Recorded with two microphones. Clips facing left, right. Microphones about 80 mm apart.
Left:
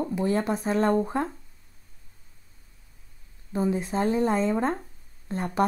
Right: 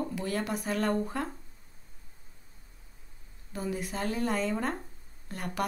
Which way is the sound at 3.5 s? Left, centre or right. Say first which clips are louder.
Left 8 dB; left.